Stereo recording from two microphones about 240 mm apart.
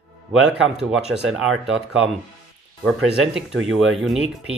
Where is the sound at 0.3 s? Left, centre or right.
Centre.